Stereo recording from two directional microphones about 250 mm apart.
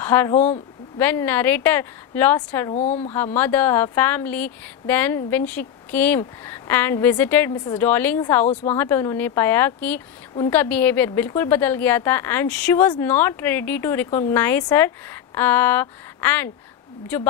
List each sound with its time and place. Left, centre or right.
0.0 s speech: centre
0.3 s speech: left
0.9 s speech: centre
2.7 s speech: left
3.3 s speech: centre